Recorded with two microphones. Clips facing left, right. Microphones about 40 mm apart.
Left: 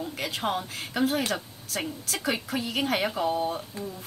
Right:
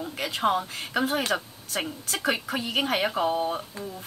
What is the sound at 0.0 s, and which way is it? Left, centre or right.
A woman's voice, centre.